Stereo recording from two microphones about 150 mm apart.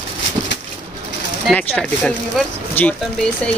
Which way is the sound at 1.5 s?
10° left (ahead or behind).